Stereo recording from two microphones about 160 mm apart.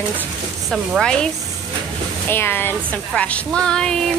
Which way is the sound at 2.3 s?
15° left (ahead or behind).